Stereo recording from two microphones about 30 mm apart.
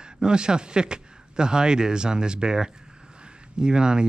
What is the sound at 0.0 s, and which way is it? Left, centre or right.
Speech, right.